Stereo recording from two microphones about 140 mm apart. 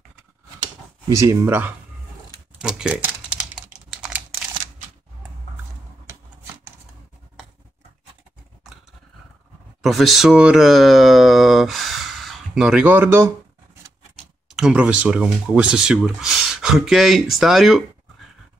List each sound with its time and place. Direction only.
1.0 s speech: 20° right (ahead or behind)
2.6 s typing: 5° right (ahead or behind)
9.8 s speech: centre (ahead or behind); by 13.3 s 15° right (ahead or behind)
14.5 s speech: 5° right (ahead or behind)